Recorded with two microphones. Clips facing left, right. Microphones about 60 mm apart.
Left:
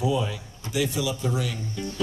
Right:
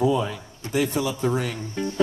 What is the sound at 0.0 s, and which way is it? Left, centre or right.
A man's voice, right.